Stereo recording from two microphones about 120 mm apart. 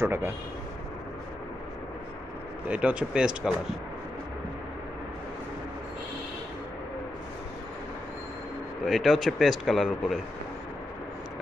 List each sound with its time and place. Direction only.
0.0 s speech: 20° right (ahead or behind)
2.7 s speech: 10° right (ahead or behind)
8.8 s speech: centre (ahead or behind)